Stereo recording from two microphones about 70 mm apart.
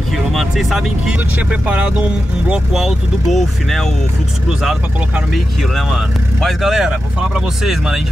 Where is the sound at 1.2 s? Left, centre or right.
Right.